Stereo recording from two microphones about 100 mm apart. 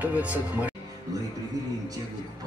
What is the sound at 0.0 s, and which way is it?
Speech, 15° right (ahead or behind).